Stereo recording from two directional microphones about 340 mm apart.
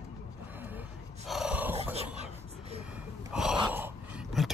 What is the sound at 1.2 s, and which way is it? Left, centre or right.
Dog, centre.